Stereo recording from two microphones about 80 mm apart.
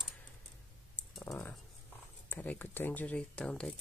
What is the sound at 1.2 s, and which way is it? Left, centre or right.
Speech, left.